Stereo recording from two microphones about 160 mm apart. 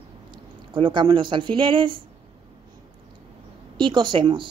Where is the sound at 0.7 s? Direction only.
30° right (ahead or behind).